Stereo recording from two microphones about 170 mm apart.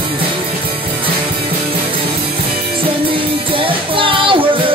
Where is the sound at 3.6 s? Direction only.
30° right (ahead or behind).